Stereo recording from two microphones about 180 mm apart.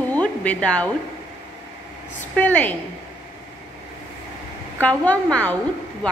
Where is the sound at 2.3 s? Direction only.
10° left (ahead or behind).